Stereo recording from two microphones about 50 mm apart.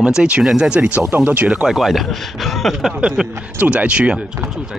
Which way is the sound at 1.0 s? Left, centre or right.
Right.